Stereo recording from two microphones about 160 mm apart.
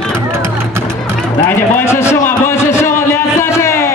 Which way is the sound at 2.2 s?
15° left (ahead or behind).